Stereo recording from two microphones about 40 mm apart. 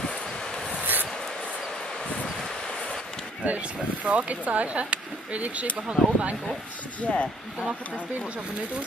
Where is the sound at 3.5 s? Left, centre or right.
Right.